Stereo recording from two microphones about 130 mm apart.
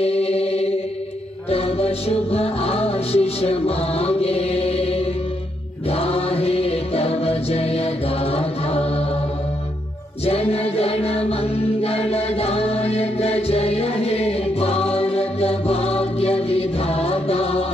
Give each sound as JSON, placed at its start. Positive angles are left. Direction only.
{"t": 0.0, "sound": "chant", "side_deg": 50}
{"t": 1.5, "sound": "music", "side_deg": 50}
{"t": 10.2, "sound": "music", "side_deg": 50}